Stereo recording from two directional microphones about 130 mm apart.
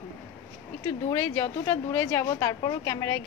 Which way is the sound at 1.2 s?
20° left (ahead or behind).